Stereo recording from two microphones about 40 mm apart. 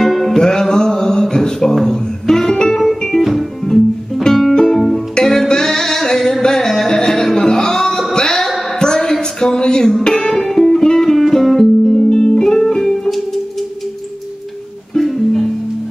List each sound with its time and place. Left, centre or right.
0.0 s music: centre
0.4 s music: centre
3.2 s music: centre
8.4 s a sound: centre
8.7 s a sound: centre
10.0 s music: centre
15.0 s music: centre